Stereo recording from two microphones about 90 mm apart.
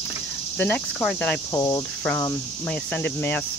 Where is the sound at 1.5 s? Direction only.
35° left (ahead or behind).